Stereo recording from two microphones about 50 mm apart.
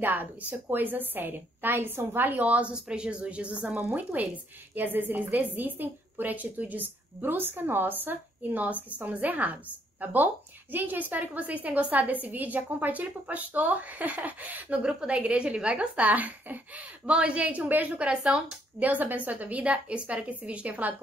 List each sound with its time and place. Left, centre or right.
0.0 s a woman's voice: right
2.7 s a woman's voice: centre; by 14.8 s right
14.8 s a woman's voice: centre; by 17.9 s right
17.9 s a woman's voice: right
18.8 s a woman's voice: right